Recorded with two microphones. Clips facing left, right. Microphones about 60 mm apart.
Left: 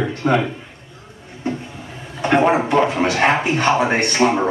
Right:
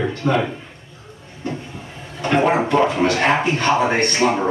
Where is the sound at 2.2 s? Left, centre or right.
Centre.